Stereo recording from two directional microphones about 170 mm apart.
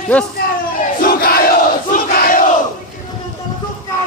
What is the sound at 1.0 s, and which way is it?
Crowd, 60° left (ahead or behind).